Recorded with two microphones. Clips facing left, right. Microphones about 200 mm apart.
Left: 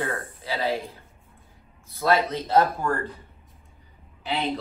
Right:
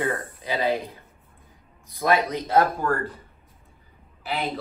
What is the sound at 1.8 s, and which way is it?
Speech, 15° right (ahead or behind).